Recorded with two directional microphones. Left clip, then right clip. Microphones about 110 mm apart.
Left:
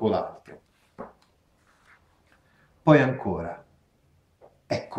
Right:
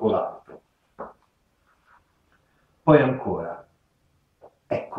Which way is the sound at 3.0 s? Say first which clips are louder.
Right 3 dB; 20° left (ahead or behind).